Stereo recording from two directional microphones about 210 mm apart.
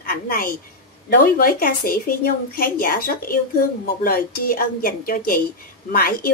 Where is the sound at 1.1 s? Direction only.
45° left (ahead or behind).